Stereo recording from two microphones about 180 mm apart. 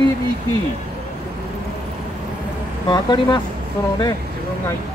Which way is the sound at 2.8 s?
25° left (ahead or behind).